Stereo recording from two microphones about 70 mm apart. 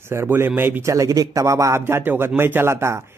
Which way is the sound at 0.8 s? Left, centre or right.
Right.